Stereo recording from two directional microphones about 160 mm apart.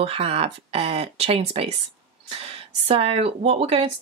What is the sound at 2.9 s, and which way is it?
Speech, 40° right (ahead or behind).